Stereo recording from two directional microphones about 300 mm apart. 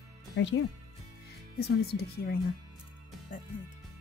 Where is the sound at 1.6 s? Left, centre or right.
Left.